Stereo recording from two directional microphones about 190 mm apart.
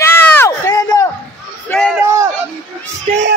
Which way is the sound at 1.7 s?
5° left (ahead or behind).